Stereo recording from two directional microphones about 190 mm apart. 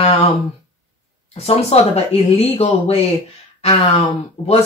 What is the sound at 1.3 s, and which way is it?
Speech, 35° left (ahead or behind).